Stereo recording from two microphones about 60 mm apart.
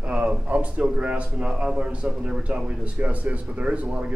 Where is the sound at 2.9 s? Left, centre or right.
Right.